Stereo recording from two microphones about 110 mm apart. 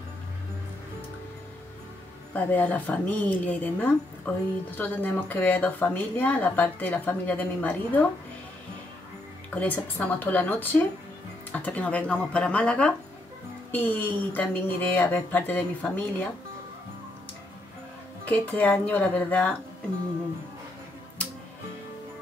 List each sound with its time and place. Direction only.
2.3 s a woman's voice: 15° left (ahead or behind)
9.5 s a woman's voice: 15° left (ahead or behind)
18.2 s a woman's voice: 15° left (ahead or behind)